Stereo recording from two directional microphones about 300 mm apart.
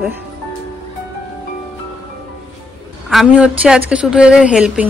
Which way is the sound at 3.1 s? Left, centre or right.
Centre.